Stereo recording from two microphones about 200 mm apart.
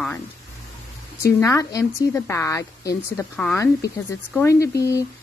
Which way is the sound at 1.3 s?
15° left (ahead or behind).